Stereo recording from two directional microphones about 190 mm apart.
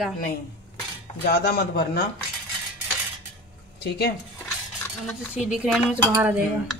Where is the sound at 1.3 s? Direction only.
60° left (ahead or behind).